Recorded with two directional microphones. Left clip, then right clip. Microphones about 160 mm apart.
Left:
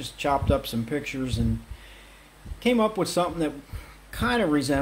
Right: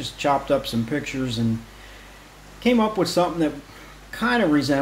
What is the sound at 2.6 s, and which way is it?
Speech, 25° left (ahead or behind).